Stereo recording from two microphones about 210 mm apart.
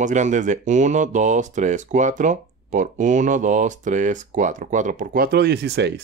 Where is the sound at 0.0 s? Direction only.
35° right (ahead or behind).